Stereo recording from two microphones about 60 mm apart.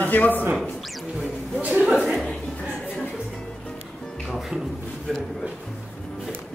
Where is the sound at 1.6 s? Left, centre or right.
Right.